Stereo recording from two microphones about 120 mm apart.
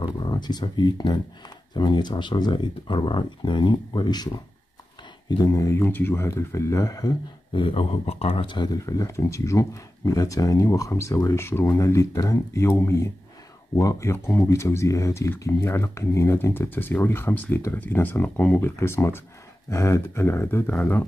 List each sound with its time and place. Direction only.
0.0 s speech: 40° left (ahead or behind)
5.3 s speech: 30° left (ahead or behind)
7.5 s speech: 45° left (ahead or behind); by 21.0 s 15° left (ahead or behind)